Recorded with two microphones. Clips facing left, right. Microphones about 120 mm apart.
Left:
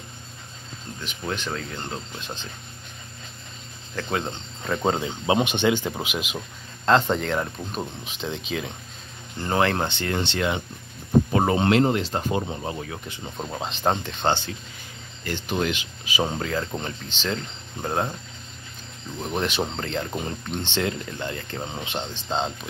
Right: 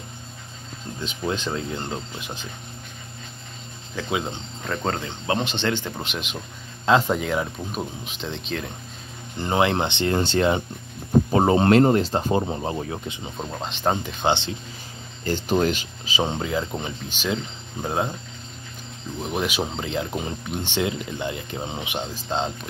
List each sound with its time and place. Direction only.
1.0 s speech: 20° right (ahead or behind)
3.9 s speech: 5° right (ahead or behind)
4.8 s speech: 15° left (ahead or behind)
6.9 s speech: 5° right (ahead or behind)
9.4 s speech: 15° right (ahead or behind)
10.1 s speech: 40° right (ahead or behind)
11.6 s speech: 40° right (ahead or behind)
13.1 s speech: 10° right (ahead or behind)
13.5 s speech: centre (ahead or behind)
14.0 s speech: 20° right (ahead or behind)
15.2 s speech: 35° right (ahead or behind)
16.2 s speech: 20° right (ahead or behind); by 18.1 s 5° right (ahead or behind)
19.1 s speech: 5° right (ahead or behind)